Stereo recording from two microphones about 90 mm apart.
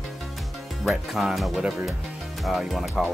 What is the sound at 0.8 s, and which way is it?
Speech, centre (ahead or behind).